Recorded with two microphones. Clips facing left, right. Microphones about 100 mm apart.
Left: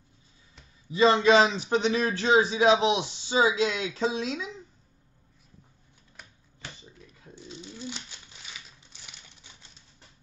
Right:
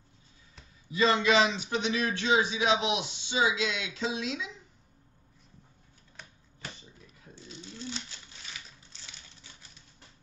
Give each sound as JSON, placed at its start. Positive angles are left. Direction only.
{"t": 0.9, "sound": "a man's voice", "side_deg": 30}
{"t": 7.3, "sound": "bird", "side_deg": 15}
{"t": 8.9, "sound": "typewriter", "side_deg": 20}